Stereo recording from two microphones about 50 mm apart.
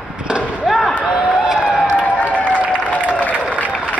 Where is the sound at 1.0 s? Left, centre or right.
Centre.